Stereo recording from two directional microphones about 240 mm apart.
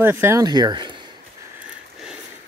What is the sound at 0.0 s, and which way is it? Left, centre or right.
Speech, centre.